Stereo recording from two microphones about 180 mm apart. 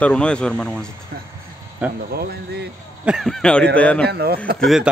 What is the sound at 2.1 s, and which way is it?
Speech, 60° right (ahead or behind).